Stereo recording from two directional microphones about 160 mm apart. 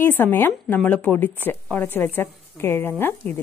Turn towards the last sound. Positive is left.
turn(degrees=10)  # may be behind; listen again after turning